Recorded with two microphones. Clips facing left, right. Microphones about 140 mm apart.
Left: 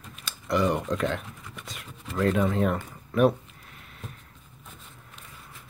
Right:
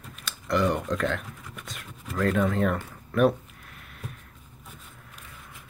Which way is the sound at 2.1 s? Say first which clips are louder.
Even; 5° left (ahead or behind).